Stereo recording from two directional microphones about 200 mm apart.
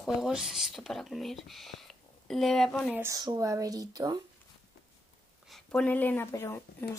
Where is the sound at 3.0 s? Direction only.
20° right (ahead or behind).